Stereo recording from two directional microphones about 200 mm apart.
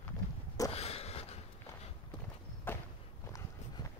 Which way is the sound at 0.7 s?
30° left (ahead or behind).